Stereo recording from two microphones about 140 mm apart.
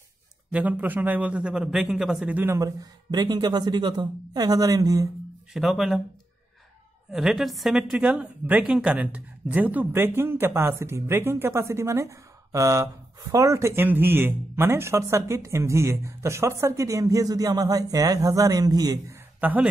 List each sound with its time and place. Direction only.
0.5 s a man's voice: 10° right (ahead or behind); by 5.0 s 25° right (ahead or behind)
5.5 s speech: centre (ahead or behind)
7.1 s a woman's voice: 5° right (ahead or behind); by 18.9 s 25° right (ahead or behind)
19.4 s a man's voice: 10° right (ahead or behind)